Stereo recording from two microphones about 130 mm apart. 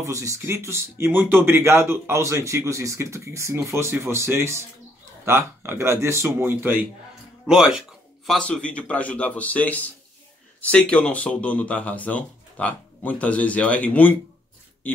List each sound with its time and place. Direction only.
0.0 s speech: 25° right (ahead or behind)
7.4 s speech: 5° right (ahead or behind)
8.3 s speech: 5° left (ahead or behind)